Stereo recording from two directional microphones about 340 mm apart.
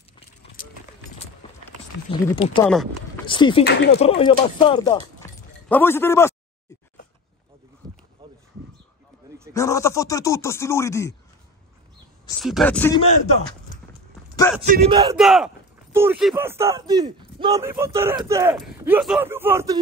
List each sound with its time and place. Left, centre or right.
0.6 s clip-clop: left
2.0 s speech: centre
2.7 s a sound: centre
3.3 s speech: centre
3.6 s speech: left
4.2 s speech: centre
7.8 s a sound: centre
9.5 s speech: centre
12.4 s speech: centre
14.3 s a sound: centre
14.6 s speech: right
15.1 s speech: centre